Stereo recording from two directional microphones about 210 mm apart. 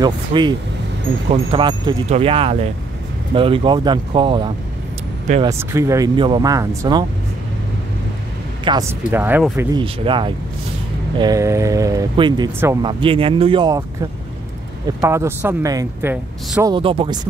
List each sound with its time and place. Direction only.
0.0 s speech: 20° right (ahead or behind)
5.4 s speech: 10° right (ahead or behind)
8.6 s speech: 15° right (ahead or behind)
9.8 s speech: 25° right (ahead or behind)
15.0 s speech: 15° right (ahead or behind)
16.7 s speech: 25° right (ahead or behind)